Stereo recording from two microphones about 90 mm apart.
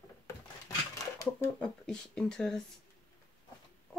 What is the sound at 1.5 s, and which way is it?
Speech, 5° left (ahead or behind).